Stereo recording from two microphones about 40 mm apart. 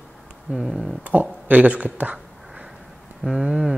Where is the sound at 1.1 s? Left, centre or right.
Right.